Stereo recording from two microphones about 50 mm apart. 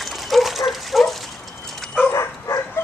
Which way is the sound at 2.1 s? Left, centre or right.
Left.